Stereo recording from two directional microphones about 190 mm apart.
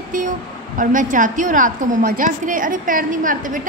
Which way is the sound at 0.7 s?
45° right (ahead or behind).